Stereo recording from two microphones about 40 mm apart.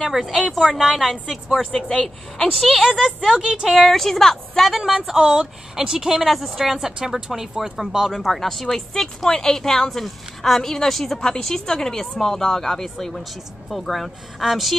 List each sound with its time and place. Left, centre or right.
0.0 s speech: centre
1.8 s speech: centre
2.8 s speech: centre
3.7 s speech: centre
4.6 s speech: centre
5.8 s speech: centre
8.1 s speech: centre
9.8 s speech: centre